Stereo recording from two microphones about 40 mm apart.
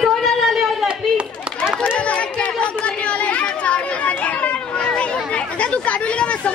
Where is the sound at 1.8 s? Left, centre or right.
Left.